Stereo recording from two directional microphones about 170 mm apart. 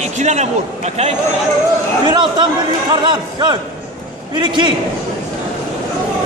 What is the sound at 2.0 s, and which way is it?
A man's voice, 25° right (ahead or behind).